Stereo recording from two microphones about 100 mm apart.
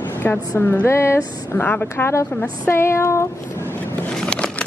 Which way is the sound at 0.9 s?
25° left (ahead or behind).